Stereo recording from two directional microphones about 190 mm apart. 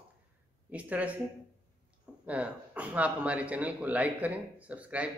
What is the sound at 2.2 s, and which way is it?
Speech, 5° right (ahead or behind).